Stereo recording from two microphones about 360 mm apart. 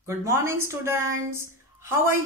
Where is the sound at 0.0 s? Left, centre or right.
Centre.